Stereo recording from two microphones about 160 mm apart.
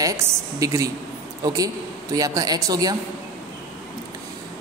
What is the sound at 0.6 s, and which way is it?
Speech, 20° right (ahead or behind).